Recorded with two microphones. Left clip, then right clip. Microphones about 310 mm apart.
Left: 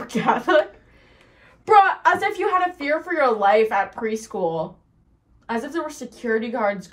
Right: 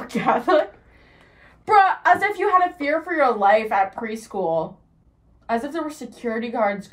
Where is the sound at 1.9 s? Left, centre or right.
Centre.